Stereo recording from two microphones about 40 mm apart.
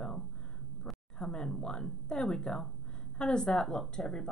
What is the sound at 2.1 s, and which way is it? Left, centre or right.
Speech, centre.